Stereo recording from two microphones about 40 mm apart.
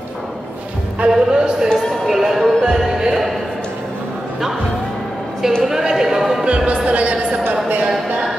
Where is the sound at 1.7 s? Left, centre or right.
Centre.